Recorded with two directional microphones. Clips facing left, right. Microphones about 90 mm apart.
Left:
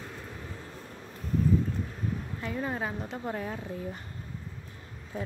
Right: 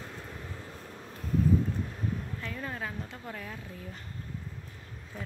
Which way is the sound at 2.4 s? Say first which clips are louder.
Left 5 dB; 20° left (ahead or behind).